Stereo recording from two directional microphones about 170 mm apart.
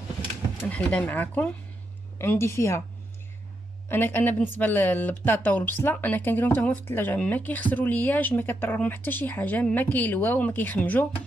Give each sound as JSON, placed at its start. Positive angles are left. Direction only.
{"t": 0.7, "sound": "speech", "side_deg": 10}
{"t": 3.9, "sound": "speech", "side_deg": 10}